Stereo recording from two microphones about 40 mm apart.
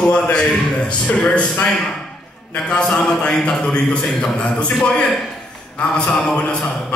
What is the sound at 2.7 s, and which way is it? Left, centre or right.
Speech, centre.